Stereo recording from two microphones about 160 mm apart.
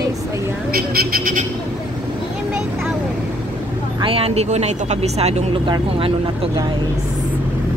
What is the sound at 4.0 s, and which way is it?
Speech, 35° right (ahead or behind).